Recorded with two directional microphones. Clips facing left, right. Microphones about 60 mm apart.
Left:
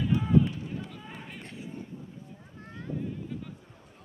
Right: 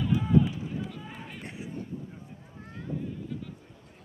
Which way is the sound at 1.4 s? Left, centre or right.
Centre.